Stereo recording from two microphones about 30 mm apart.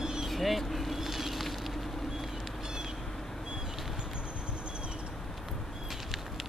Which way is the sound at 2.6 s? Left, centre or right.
Right.